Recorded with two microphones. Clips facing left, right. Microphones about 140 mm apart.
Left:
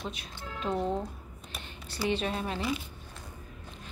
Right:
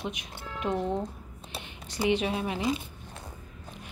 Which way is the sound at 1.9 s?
15° right (ahead or behind).